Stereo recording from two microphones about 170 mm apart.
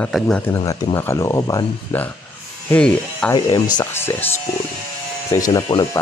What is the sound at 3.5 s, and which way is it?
Speech, 20° left (ahead or behind).